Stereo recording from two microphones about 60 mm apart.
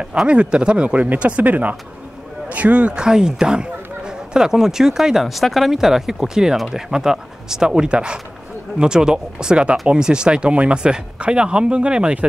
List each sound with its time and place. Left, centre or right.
0.3 s speech: centre